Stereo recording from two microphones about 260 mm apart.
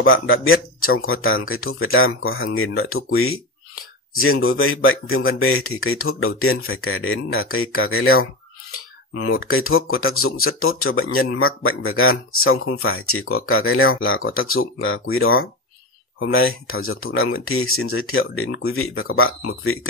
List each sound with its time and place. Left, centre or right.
0.0 s speech: left
8.7 s a sound: left
9.5 s speech: left